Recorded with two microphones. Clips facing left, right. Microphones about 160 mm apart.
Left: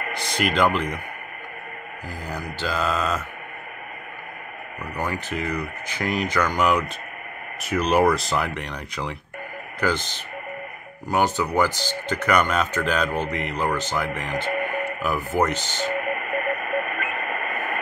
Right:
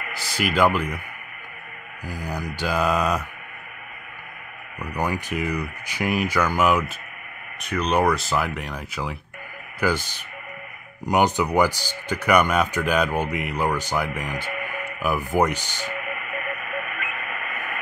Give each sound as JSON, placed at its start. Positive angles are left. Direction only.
{"t": 0.1, "sound": "speech", "side_deg": -5}
{"t": 2.0, "sound": "speech", "side_deg": -15}
{"t": 4.7, "sound": "speech", "side_deg": -15}
{"t": 7.6, "sound": "speech", "side_deg": 5}
{"t": 14.5, "sound": "radio", "side_deg": 40}
{"t": 15.0, "sound": "speech", "side_deg": -10}
{"t": 15.9, "sound": "radio", "side_deg": 40}